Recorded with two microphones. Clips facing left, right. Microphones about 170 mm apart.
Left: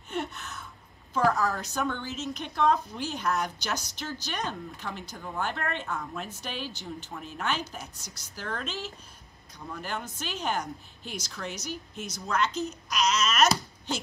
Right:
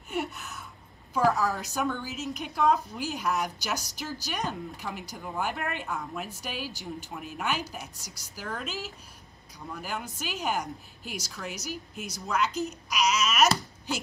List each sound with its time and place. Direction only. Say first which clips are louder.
0.1 s a sound: right 1 dB; centre (ahead or behind)
1.1 s a woman's voice: even; centre (ahead or behind)
7.9 s a woman's voice: even; 35° right (ahead or behind)
8.4 s a woman's voice: left 1 dB; 5° right (ahead or behind)